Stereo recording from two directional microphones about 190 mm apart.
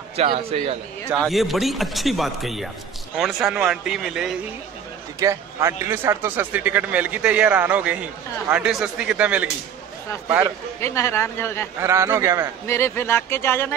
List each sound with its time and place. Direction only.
0.1 s a man's voice: 30° right (ahead or behind)
1.2 s speech: centre (ahead or behind)
5.2 s speech: 15° right (ahead or behind)
10.8 s speech: 15° left (ahead or behind)
11.8 s speech: 15° right (ahead or behind)
12.6 s speech: 15° left (ahead or behind)